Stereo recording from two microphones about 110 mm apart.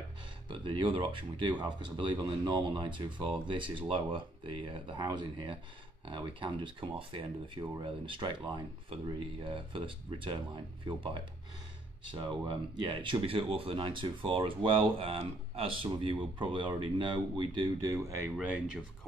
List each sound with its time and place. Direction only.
0.5 s speech: 50° right (ahead or behind)
17.8 s speech: 25° right (ahead or behind)